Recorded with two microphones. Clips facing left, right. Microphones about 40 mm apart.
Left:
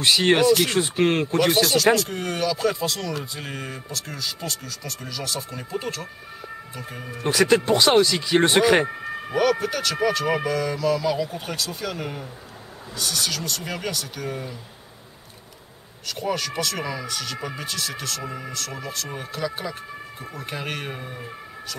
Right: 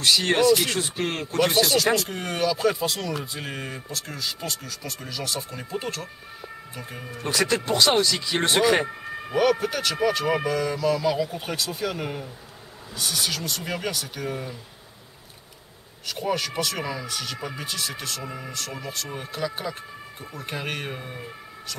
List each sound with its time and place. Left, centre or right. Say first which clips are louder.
0.0 s speech: left 2 dB; left
1.6 s speech: left 2 dB; centre
7.2 s speech: left 5 dB; centre
9.3 s speech: even; centre
16.1 s speech: even; centre